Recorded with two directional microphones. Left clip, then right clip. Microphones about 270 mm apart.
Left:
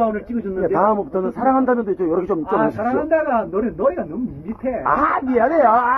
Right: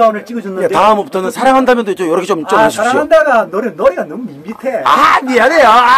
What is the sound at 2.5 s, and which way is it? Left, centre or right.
Speech, centre.